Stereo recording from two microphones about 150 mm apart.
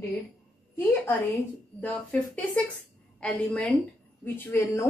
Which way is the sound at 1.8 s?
10° left (ahead or behind).